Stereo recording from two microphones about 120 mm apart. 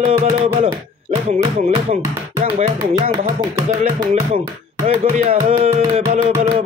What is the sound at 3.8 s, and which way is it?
Speech, 65° right (ahead or behind).